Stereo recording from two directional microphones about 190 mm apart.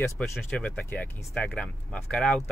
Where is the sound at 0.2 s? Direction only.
5° left (ahead or behind).